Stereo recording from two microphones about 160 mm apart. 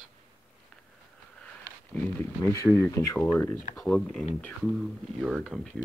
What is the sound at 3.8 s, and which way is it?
Speech, 5° left (ahead or behind).